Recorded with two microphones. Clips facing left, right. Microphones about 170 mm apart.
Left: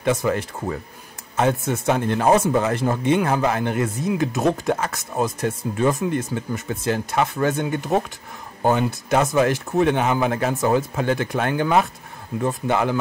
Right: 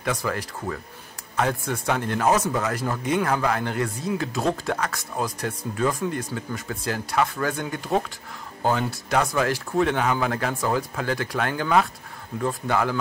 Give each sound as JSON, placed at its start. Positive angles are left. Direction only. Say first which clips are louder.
{"t": 0.0, "sound": "speech", "louder": "left 6 dB", "side_deg": 20}